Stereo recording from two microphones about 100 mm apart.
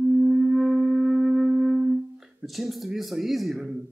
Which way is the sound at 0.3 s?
5° right (ahead or behind).